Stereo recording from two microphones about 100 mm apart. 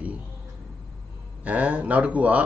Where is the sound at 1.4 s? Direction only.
15° right (ahead or behind).